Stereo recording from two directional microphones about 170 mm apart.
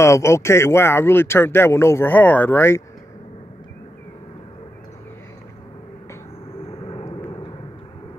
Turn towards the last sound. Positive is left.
turn(degrees=35)  # may be behind; listen again after turning